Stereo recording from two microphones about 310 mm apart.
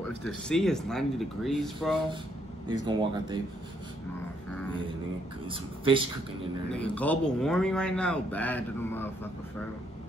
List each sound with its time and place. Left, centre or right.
0.2 s a man's voice: centre
2.7 s speech: centre
5.5 s speech: centre
6.7 s a man's voice: centre